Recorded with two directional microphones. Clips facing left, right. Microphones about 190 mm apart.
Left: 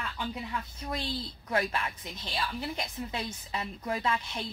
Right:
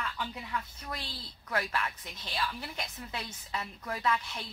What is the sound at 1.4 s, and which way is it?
A woman's voice, 25° left (ahead or behind).